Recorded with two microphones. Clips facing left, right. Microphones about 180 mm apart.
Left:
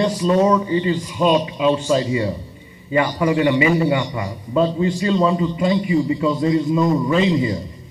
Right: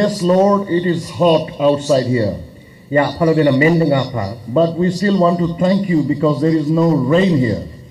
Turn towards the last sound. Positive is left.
turn(degrees=-40)  # may be behind; listen again after turning